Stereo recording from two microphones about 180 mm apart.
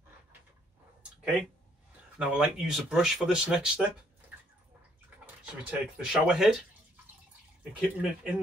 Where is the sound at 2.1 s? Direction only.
5° right (ahead or behind).